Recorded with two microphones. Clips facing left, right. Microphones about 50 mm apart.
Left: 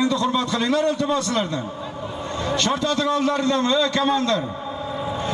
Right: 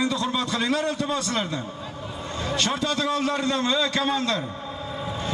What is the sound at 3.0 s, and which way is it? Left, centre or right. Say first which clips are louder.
A man's voice: left 4 dB; centre.